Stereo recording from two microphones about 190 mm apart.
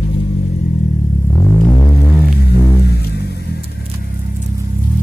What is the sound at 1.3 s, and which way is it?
Music, 15° left (ahead or behind).